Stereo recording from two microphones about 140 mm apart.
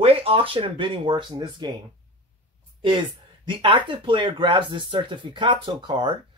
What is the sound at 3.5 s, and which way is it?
Speech, 35° right (ahead or behind).